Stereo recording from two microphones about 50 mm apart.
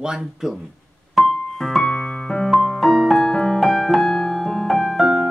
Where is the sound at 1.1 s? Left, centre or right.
Centre.